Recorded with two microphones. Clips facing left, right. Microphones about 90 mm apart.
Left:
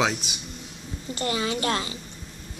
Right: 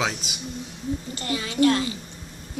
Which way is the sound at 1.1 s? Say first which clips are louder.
Even; 25° left (ahead or behind).